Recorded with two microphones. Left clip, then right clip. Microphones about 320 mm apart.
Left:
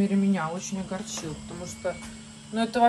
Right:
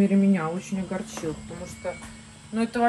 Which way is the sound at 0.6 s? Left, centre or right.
Centre.